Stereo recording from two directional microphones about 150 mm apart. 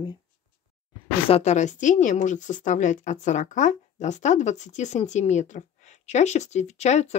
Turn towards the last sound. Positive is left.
turn(degrees=50)  # may be behind; listen again after turning